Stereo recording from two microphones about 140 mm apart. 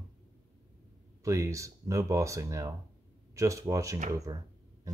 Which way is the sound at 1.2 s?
20° right (ahead or behind).